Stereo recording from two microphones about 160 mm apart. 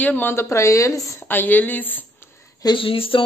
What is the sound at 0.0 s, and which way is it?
A woman's voice, 10° left (ahead or behind).